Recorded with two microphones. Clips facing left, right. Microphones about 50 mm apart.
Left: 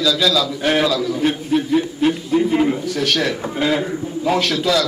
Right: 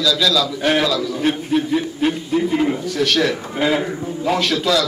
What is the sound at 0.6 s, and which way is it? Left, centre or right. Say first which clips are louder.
Speech: left 1 dB; centre.